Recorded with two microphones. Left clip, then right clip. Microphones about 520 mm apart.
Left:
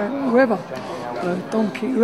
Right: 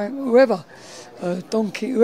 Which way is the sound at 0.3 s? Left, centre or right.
Right.